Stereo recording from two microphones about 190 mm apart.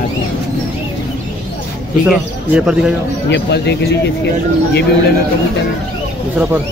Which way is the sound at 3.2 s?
65° left (ahead or behind).